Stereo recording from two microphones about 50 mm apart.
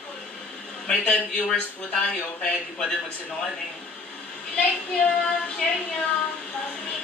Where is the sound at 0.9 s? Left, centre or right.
Centre.